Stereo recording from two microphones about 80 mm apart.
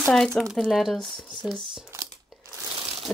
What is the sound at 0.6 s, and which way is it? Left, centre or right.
Speech, centre.